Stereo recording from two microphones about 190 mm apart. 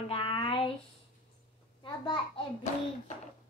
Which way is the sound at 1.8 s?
25° left (ahead or behind).